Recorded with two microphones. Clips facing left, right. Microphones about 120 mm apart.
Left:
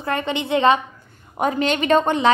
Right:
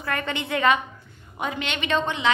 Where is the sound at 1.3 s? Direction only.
40° left (ahead or behind).